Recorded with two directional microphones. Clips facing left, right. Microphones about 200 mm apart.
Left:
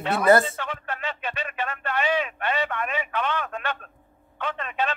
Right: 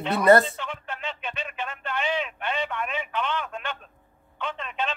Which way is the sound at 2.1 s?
55° left (ahead or behind).